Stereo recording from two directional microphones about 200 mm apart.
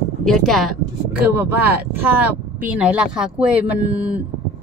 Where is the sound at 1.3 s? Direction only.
10° right (ahead or behind).